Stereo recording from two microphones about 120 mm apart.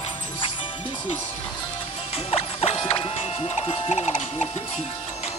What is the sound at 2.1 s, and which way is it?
Music, 55° left (ahead or behind).